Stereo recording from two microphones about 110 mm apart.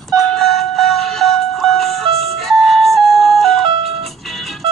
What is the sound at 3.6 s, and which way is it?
Music, 55° right (ahead or behind).